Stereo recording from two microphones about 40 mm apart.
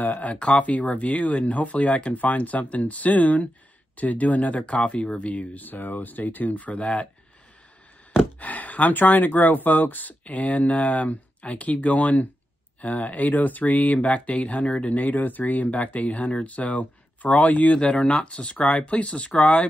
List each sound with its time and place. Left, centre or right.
0.2 s speech: left
8.4 s speech: left
15.0 s speech: left
18.1 s speech: left